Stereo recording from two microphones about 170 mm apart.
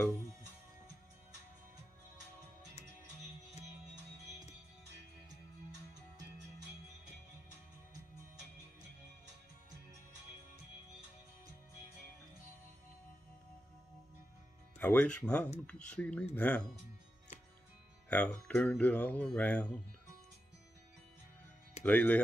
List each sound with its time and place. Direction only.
14.8 s speech: 10° left (ahead or behind)
18.1 s speech: 10° left (ahead or behind)
21.8 s speech: 10° left (ahead or behind)